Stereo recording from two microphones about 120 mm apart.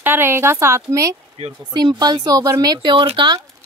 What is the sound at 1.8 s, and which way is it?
Speech, 35° right (ahead or behind).